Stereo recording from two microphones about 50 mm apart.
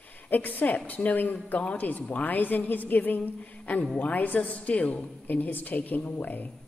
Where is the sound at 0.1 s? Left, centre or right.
Left.